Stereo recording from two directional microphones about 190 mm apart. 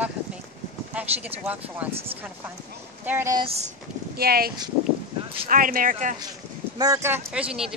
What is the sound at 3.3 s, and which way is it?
Speech, 30° right (ahead or behind).